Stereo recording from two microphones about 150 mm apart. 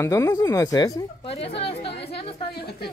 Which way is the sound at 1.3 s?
40° left (ahead or behind).